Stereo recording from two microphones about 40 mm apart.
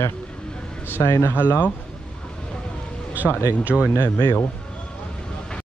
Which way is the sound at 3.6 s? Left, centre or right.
Right.